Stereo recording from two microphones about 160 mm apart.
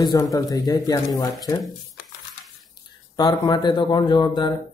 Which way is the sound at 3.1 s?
25° left (ahead or behind).